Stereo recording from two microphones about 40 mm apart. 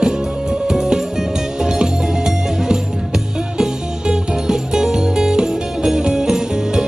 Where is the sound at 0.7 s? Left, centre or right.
Centre.